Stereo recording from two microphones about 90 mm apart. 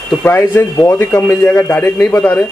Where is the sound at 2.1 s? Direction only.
15° left (ahead or behind).